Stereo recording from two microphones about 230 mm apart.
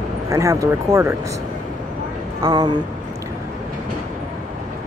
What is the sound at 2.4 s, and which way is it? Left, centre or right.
Speech, centre.